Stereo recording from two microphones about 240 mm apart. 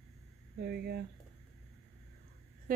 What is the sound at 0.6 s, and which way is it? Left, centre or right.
Speech, right.